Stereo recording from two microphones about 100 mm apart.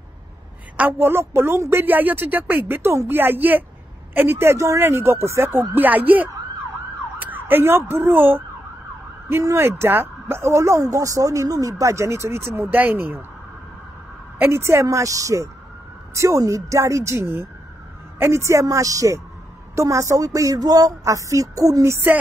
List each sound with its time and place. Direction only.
0.7 s speech: 20° right (ahead or behind)
7.2 s ambulance: 20° right (ahead or behind)
9.3 s speech: 25° right (ahead or behind)
14.4 s speech: 25° right (ahead or behind)